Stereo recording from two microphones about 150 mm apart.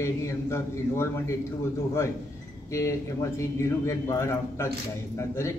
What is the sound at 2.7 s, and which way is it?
A man's voice, 20° left (ahead or behind).